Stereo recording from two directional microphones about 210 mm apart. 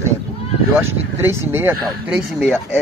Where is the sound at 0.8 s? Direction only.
10° right (ahead or behind).